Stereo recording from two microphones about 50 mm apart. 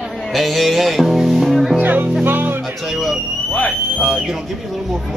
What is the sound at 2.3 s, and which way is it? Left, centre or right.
Music, right.